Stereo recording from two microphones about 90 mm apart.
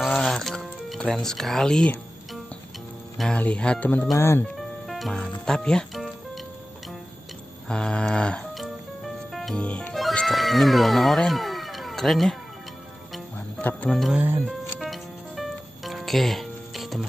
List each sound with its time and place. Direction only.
0.0 s music: 5° left (ahead or behind)
3.3 s a sound: 15° left (ahead or behind)
4.2 s speech: 30° left (ahead or behind)
4.6 s music: centre (ahead or behind)
7.6 s a sound: 10° left (ahead or behind)
8.5 s music: centre (ahead or behind)
9.6 s a sound: 15° left (ahead or behind)
10.2 s speech: centre (ahead or behind)
13.6 s music: 15° left (ahead or behind)
13.8 s speech: centre (ahead or behind)
14.1 s speech: 20° right (ahead or behind)
14.8 s music: centre (ahead or behind)